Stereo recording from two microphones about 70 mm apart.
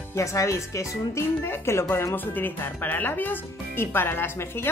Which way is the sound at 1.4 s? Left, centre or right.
Left.